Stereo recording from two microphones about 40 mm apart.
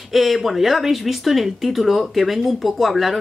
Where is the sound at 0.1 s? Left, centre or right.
Centre.